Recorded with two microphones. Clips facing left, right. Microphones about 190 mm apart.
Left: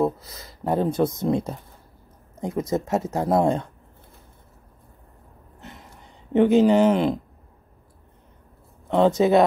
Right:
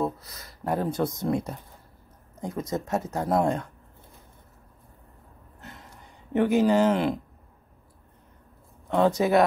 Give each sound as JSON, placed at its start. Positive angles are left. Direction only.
{"t": 0.0, "sound": "speech", "side_deg": 25}
{"t": 6.3, "sound": "speech", "side_deg": 20}
{"t": 8.9, "sound": "speech", "side_deg": 20}